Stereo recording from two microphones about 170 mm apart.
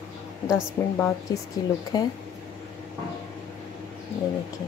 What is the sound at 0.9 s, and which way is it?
Speech, 10° left (ahead or behind).